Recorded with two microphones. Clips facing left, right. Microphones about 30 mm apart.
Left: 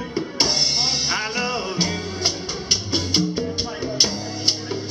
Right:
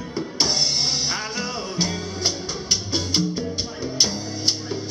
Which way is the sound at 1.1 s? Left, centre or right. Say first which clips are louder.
Left 4 dB; centre.